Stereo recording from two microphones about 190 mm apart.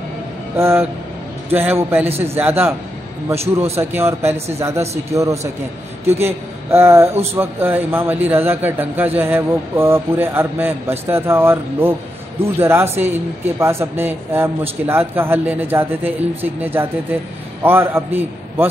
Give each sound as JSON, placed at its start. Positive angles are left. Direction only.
{"t": 0.6, "sound": "a man's voice", "side_deg": -15}